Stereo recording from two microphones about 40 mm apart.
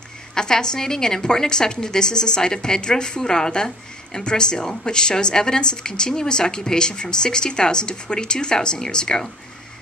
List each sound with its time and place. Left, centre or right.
0.3 s a woman's voice: centre